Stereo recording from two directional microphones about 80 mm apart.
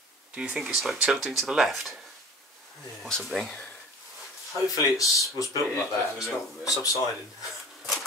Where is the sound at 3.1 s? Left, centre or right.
Centre.